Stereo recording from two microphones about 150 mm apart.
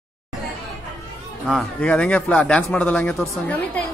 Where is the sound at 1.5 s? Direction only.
5° left (ahead or behind).